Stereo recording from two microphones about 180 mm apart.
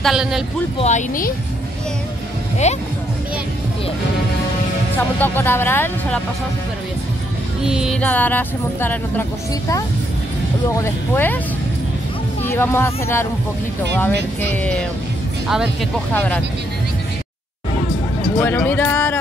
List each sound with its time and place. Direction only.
0.0 s music: 5° right (ahead or behind)
0.7 s speech: 40° left (ahead or behind)
2.6 s speech: 40° left (ahead or behind)
4.9 s speech: 10° left (ahead or behind)
7.6 s music: 5° right (ahead or behind)
8.0 s speech: 10° left (ahead or behind)
10.8 s speech: 10° left (ahead or behind)
12.4 s speech: 15° left (ahead or behind)
14.5 s speech: 10° left (ahead or behind)
15.4 s speech: centre (ahead or behind)
16.1 s speech: 10° left (ahead or behind)
18.4 s speech: 10° left (ahead or behind)